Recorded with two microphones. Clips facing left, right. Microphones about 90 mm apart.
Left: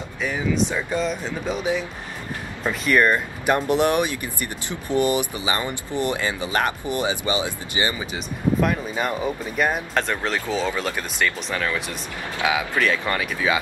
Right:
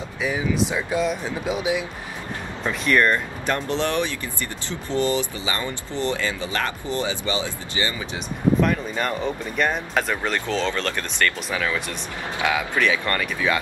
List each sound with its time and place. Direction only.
0.2 s speech: 5° right (ahead or behind)
2.6 s speech: 5° left (ahead or behind)
8.5 s speech: 5° left (ahead or behind)